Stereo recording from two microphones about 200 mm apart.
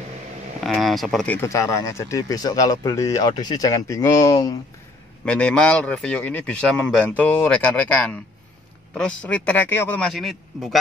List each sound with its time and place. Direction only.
0.7 s speech: centre (ahead or behind); by 4.6 s 15° left (ahead or behind)
5.2 s a man's voice: 5° left (ahead or behind)